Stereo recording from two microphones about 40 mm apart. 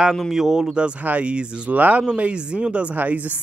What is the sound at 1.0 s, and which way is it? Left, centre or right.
Speech, right.